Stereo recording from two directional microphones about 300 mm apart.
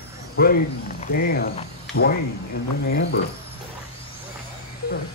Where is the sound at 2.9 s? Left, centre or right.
Left.